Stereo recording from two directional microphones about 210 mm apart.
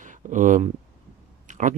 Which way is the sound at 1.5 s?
35° right (ahead or behind).